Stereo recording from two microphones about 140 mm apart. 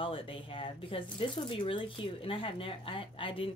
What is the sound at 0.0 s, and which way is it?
Speech, 40° left (ahead or behind).